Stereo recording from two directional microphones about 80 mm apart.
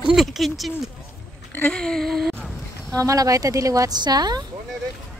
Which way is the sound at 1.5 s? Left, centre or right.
Centre.